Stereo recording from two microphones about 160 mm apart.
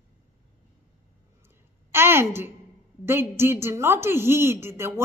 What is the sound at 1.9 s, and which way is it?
A woman's voice, 15° right (ahead or behind).